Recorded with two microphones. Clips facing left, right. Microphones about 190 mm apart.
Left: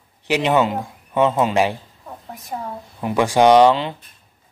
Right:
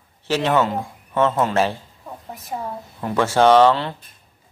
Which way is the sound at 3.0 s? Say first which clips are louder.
Left 2 dB; 15° left (ahead or behind).